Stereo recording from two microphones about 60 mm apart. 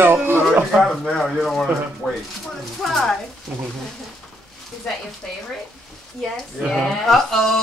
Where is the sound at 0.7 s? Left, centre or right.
Centre.